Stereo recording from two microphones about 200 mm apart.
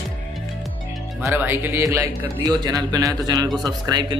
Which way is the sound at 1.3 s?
10° right (ahead or behind).